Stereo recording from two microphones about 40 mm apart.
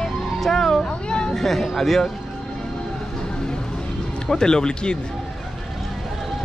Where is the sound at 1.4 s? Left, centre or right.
Centre.